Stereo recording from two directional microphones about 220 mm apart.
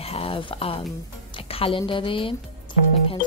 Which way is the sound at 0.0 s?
25° left (ahead or behind).